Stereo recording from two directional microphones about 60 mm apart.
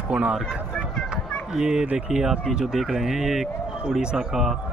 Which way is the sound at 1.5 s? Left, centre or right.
Centre.